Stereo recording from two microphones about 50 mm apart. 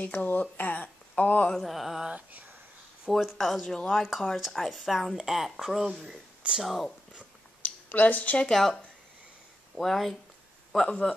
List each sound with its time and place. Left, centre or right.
0.0 s speech: left
1.5 s a woman's voice: centre
2.0 s speech: right
3.1 s a woman's voice: centre
6.0 s speech: centre
6.6 s a woman's voice: centre
7.6 s speech: left
8.5 s speech: centre
9.8 s a woman's voice: centre